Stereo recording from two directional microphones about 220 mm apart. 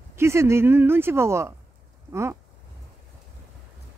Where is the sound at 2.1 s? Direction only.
10° right (ahead or behind).